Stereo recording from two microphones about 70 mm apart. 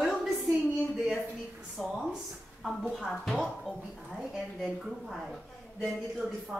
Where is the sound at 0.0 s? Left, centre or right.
Centre.